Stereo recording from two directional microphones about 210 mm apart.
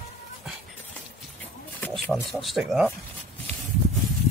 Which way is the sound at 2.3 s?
Centre (ahead or behind).